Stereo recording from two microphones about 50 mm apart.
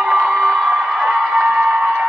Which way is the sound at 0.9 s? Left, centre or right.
Right.